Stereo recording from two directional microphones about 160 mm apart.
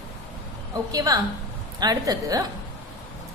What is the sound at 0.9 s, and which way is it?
A woman's voice, 20° right (ahead or behind).